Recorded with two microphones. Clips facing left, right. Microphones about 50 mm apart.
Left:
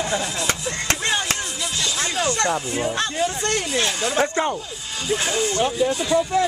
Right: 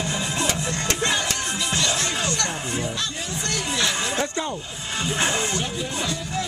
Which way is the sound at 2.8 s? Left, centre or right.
Left.